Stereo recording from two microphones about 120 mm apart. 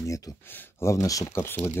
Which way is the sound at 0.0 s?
25° left (ahead or behind).